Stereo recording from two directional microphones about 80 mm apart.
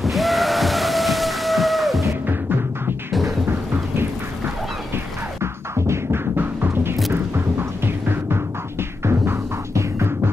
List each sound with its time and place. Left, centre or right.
0.0 s a sound: centre
3.1 s music: centre
4.9 s music: right
7.1 s throbbing: right